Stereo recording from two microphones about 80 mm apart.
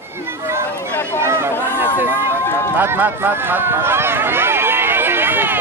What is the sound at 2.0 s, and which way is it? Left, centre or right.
Run, right.